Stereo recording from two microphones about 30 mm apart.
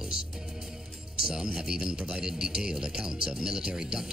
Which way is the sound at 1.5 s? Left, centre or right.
Right.